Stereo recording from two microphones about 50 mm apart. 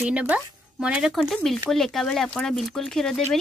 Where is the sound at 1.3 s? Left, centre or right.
Centre.